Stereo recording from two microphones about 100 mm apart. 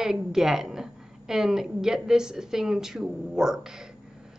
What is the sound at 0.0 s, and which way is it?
A woman's voice, 5° right (ahead or behind).